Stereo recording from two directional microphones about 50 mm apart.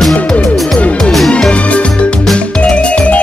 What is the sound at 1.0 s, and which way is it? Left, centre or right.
Music, centre.